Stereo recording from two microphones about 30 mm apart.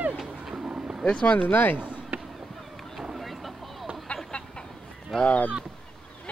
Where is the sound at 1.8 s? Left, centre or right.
Right.